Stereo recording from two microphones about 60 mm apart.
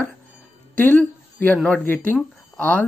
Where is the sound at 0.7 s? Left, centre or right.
Left.